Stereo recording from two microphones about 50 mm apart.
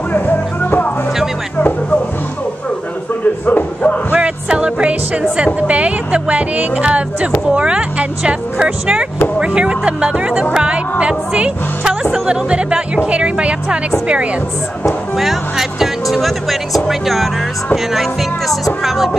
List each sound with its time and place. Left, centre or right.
0.1 s music: left
3.4 s music: left
4.1 s speech: right
10.6 s music: right
11.8 s music: centre
12.3 s speech: right
15.1 s speech: centre
18.8 s music: centre